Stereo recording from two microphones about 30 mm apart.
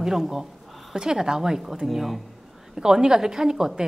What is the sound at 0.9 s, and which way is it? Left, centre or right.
Speech, right.